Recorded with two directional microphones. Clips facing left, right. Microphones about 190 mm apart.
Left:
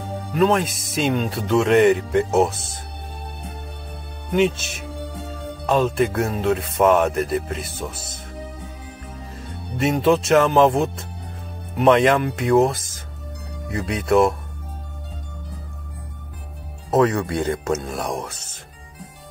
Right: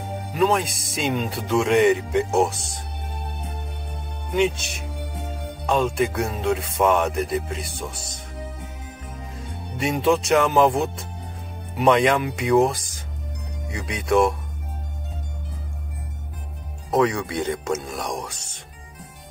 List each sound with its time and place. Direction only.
0.3 s speech: centre (ahead or behind)
5.7 s speech: 5° left (ahead or behind)
9.8 s speech: centre (ahead or behind)
13.7 s speech: 55° left (ahead or behind)
13.9 s speech: centre (ahead or behind)
16.9 s speech: 5° left (ahead or behind)